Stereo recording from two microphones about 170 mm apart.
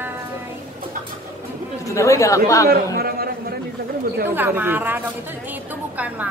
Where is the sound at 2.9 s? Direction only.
65° right (ahead or behind).